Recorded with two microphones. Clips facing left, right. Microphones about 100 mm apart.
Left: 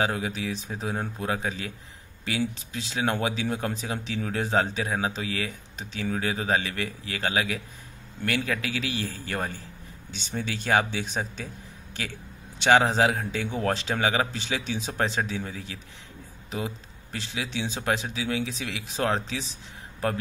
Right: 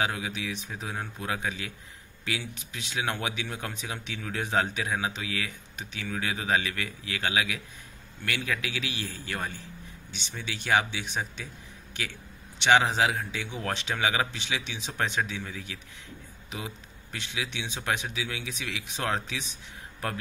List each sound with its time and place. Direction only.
0.0 s speech: 35° left (ahead or behind)
12.5 s speech: 40° left (ahead or behind)